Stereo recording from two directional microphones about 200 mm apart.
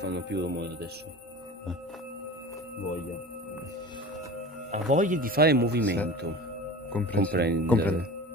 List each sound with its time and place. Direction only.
0.0 s speech: 60° right (ahead or behind)
4.6 s speech: 40° right (ahead or behind)
6.9 s speech: 5° left (ahead or behind)
7.3 s speech: 55° right (ahead or behind)
7.6 s speech: 10° left (ahead or behind)